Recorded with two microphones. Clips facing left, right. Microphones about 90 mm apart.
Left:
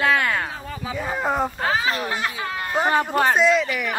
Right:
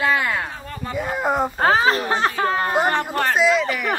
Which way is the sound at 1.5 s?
40° right (ahead or behind).